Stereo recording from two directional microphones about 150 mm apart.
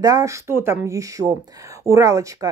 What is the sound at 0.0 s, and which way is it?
A woman's voice, 20° right (ahead or behind).